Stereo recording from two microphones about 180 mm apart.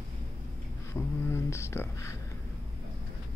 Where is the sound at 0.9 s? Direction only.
15° left (ahead or behind).